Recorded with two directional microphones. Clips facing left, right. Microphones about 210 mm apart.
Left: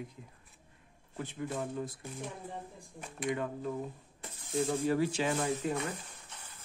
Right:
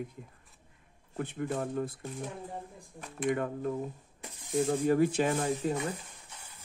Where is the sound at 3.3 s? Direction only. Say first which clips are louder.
Right 3 dB; 50° right (ahead or behind).